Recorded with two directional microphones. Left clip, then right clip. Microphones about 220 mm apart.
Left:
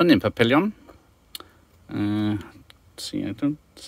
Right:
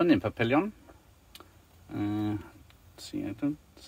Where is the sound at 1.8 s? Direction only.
50° left (ahead or behind).